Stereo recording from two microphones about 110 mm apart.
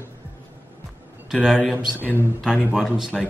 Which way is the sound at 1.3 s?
Centre (ahead or behind).